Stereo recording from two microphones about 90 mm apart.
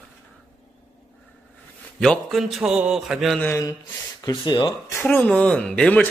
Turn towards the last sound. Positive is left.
turn(degrees=5)  # may be behind; listen again after turning